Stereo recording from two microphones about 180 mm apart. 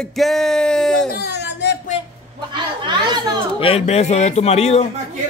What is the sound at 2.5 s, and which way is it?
Speech, 25° right (ahead or behind).